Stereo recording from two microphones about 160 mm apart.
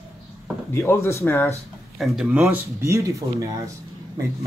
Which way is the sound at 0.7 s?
15° left (ahead or behind).